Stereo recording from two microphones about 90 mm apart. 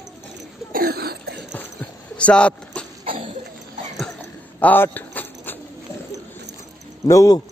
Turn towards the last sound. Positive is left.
turn(degrees=40)  # may be behind; listen again after turning